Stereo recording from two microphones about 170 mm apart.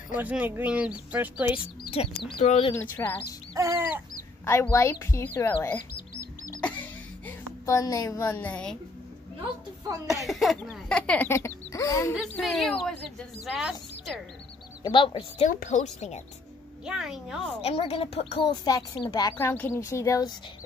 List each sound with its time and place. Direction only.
0.1 s speech: 10° right (ahead or behind)
1.9 s speech: 30° left (ahead or behind)
2.7 s speech: 10° left (ahead or behind)
3.5 s chicken: 20° right (ahead or behind)
4.5 s speech: 15° left (ahead or behind)
6.6 s a sound: 10° left (ahead or behind)
10.2 s speech: centre (ahead or behind); by 12.1 s 20° left (ahead or behind)
12.4 s speech: centre (ahead or behind)
14.8 s speech: 30° left (ahead or behind)
15.4 s speech: 45° left (ahead or behind)
16.8 s speech: 5° right (ahead or behind)
17.6 s speech: 35° left (ahead or behind); by 20.3 s 20° left (ahead or behind)